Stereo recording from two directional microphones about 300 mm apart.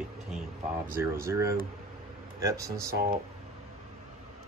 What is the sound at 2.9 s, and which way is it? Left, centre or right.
Speech, right.